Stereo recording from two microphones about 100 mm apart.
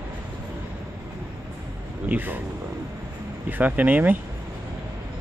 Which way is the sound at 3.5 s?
15° right (ahead or behind).